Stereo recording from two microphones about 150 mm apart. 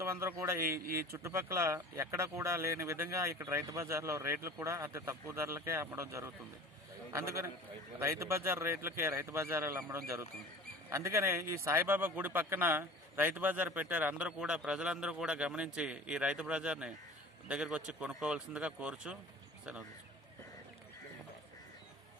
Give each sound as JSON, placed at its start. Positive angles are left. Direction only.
{"t": 0.0, "sound": "a man's voice", "side_deg": -15}